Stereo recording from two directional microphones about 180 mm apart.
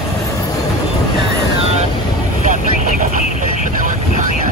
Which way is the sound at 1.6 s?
35° right (ahead or behind).